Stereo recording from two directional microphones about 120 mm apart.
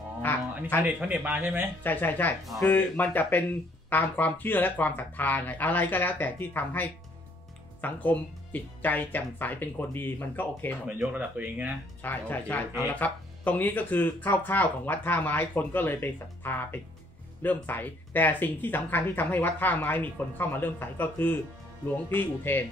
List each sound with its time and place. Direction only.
0.8 s speech: 15° right (ahead or behind)
1.8 s speech: 15° left (ahead or behind)
10.9 s speech: 15° right (ahead or behind)
12.0 s speech: 15° left (ahead or behind)